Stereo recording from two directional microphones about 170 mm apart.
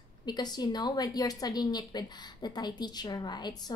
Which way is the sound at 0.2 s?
25° left (ahead or behind).